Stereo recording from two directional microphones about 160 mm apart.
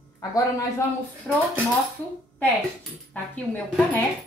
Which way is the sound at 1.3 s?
10° left (ahead or behind).